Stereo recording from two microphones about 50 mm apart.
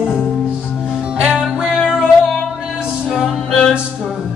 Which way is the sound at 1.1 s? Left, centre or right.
Centre.